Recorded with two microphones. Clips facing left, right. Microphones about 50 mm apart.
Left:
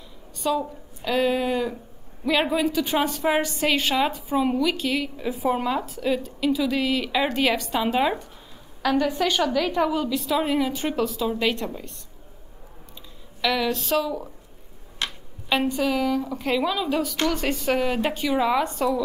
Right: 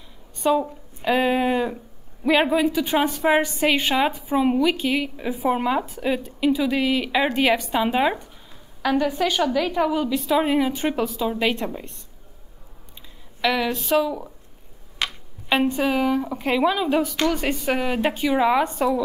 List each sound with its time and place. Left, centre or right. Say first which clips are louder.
0.4 s a woman's voice: right 4 dB; right
13.4 s a woman's voice: right 1 dB; centre
15.7 s a woman's voice: right 2 dB; right